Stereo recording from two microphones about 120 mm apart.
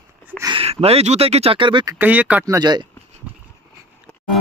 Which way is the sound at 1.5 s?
45° right (ahead or behind).